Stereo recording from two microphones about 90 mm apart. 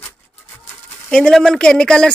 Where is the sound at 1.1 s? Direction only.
5° left (ahead or behind).